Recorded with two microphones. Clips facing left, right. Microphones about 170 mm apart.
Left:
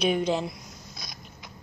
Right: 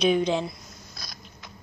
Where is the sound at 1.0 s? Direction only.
20° left (ahead or behind).